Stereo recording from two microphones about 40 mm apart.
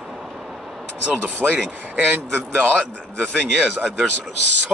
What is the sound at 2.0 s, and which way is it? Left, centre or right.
A man's voice, right.